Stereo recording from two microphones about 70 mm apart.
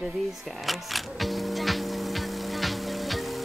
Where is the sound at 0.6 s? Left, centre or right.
Centre.